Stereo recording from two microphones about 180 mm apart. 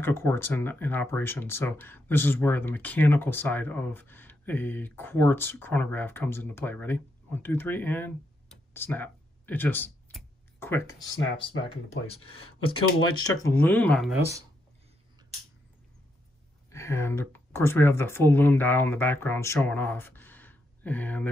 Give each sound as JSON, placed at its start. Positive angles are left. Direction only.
{"t": 0.0, "sound": "speech", "side_deg": 10}
{"t": 11.4, "sound": "speech", "side_deg": 30}
{"t": 13.0, "sound": "speech", "side_deg": 20}
{"t": 16.7, "sound": "speech", "side_deg": 15}